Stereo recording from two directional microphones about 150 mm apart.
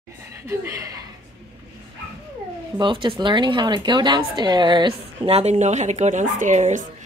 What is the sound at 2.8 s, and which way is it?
Speech, 35° right (ahead or behind).